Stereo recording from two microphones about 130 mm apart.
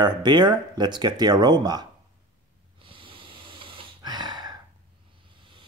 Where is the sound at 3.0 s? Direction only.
40° right (ahead or behind).